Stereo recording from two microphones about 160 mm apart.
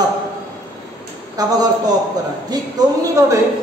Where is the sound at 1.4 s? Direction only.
25° right (ahead or behind).